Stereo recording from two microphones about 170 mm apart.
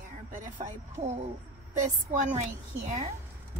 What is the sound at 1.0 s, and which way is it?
Speech, 40° right (ahead or behind).